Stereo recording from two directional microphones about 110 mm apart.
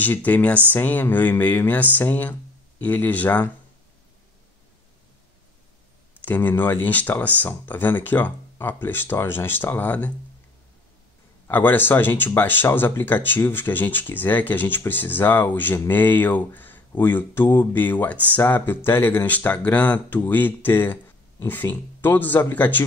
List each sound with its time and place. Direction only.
0.0 s speech: 15° left (ahead or behind)
6.2 s speech: 15° left (ahead or behind)
11.4 s speech: 20° left (ahead or behind)